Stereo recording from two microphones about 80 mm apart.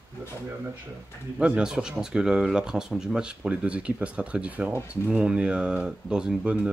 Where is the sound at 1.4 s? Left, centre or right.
Centre.